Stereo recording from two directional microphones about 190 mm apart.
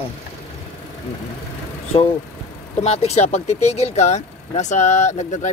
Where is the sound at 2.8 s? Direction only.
35° left (ahead or behind).